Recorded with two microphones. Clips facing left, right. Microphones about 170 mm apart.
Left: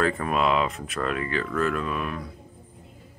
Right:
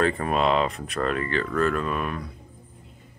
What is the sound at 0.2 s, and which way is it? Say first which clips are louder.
Speech: right 1 dB; 35° right (ahead or behind).